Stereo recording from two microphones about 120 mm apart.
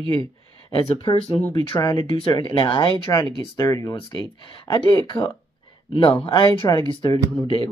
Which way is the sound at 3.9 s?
45° left (ahead or behind).